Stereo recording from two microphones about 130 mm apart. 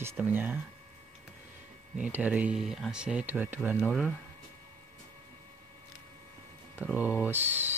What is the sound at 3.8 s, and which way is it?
Speech, 5° left (ahead or behind).